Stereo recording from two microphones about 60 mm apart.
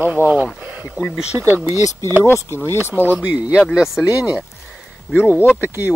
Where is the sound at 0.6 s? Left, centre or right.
Right.